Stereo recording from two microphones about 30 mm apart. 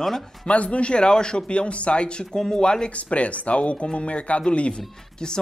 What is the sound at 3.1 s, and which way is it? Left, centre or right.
Speech, left.